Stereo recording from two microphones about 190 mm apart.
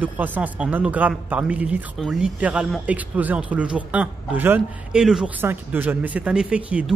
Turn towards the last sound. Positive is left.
turn(degrees=-5)  # may be behind; listen again after turning